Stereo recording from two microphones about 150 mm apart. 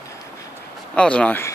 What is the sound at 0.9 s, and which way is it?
Speech, 5° left (ahead or behind).